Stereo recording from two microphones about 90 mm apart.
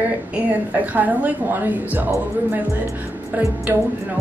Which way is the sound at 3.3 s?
20° right (ahead or behind).